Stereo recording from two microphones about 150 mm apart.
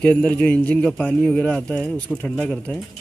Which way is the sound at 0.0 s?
10° left (ahead or behind).